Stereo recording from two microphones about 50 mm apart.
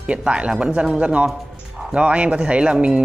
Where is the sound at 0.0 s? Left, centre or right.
Right.